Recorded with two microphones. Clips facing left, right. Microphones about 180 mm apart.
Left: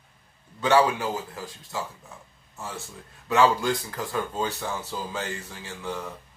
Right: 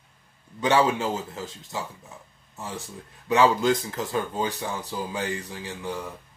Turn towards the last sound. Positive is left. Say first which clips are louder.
# right 1 dB
turn(degrees=-15)  # may be behind; listen again after turning